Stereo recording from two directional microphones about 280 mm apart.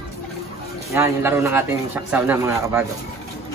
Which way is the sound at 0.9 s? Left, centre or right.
Centre.